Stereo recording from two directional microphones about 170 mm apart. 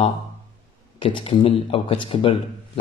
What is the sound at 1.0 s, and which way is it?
Speech, 30° left (ahead or behind).